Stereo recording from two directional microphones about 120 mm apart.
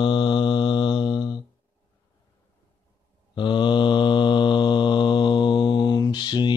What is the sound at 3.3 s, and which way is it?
Mantra, 40° left (ahead or behind).